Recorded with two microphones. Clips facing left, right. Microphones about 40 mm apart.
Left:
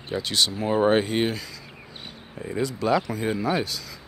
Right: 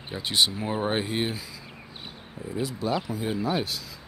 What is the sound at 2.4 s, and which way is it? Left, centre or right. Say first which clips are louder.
Speech: left 4 dB; centre.